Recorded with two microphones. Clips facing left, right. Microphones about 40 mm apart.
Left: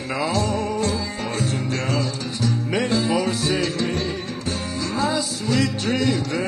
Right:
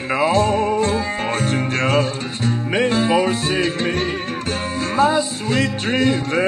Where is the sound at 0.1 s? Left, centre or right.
Right.